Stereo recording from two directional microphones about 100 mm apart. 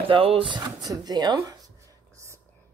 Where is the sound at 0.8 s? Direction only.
40° right (ahead or behind).